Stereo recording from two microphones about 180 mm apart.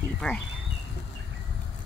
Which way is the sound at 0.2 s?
5° left (ahead or behind).